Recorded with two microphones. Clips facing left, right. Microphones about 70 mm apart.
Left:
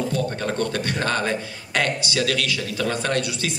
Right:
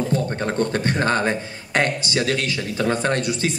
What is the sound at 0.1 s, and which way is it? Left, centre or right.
A man's voice, right.